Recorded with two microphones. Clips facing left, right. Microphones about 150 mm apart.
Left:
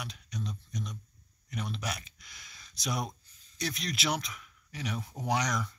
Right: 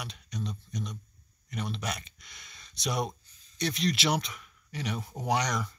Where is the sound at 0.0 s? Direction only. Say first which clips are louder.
Right 2 dB; 5° left (ahead or behind).